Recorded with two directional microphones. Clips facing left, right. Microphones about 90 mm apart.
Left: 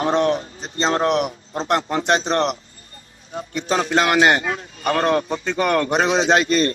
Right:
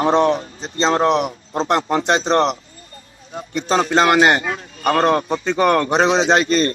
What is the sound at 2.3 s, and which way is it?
Speech, 35° right (ahead or behind).